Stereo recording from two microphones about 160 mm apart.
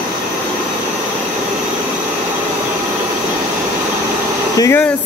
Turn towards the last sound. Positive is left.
turn(degrees=15)  # may be behind; listen again after turning